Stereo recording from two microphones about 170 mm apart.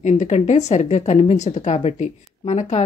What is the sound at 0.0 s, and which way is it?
Speech, 45° left (ahead or behind).